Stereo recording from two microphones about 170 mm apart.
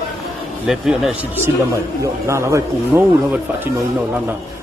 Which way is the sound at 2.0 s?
15° right (ahead or behind).